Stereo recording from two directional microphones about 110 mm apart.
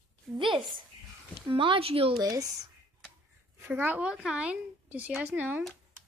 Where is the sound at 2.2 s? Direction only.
30° right (ahead or behind).